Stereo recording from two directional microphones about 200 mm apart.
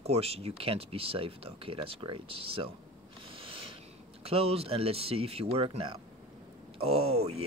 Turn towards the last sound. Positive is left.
turn(degrees=-30)  # may be behind; listen again after turning